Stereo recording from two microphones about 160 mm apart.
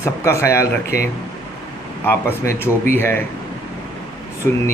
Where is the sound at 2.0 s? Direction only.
15° left (ahead or behind).